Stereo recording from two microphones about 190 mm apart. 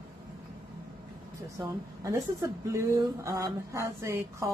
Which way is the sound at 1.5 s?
15° right (ahead or behind).